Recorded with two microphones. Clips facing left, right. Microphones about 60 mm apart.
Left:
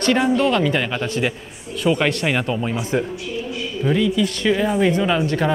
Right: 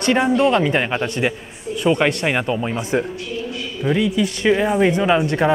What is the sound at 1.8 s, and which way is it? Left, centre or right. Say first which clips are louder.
Speech: right 1 dB; centre.